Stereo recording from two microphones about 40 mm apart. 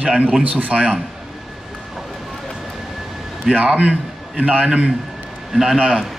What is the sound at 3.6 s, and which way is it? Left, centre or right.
A man's voice, right.